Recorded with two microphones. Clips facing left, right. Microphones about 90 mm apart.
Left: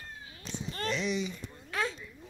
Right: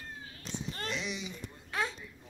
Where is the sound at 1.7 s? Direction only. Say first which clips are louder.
Left 1 dB; 25° right (ahead or behind).